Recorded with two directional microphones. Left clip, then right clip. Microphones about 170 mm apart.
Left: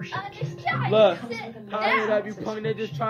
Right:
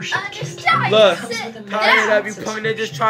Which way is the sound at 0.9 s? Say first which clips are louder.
Right 3 dB; 25° right (ahead or behind).